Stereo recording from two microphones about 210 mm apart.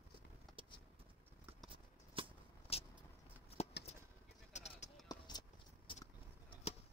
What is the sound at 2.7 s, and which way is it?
Vehicle, 25° left (ahead or behind).